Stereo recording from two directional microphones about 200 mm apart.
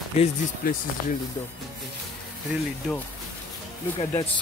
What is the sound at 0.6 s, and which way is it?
Speech, 45° left (ahead or behind).